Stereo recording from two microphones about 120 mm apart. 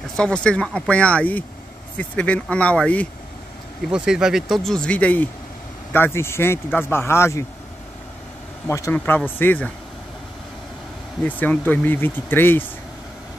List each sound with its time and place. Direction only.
0.1 s speech: 10° left (ahead or behind)
3.9 s speech: 5° right (ahead or behind); by 7.4 s 20° left (ahead or behind)
8.6 s speech: 25° left (ahead or behind)
11.2 s speech: 15° left (ahead or behind)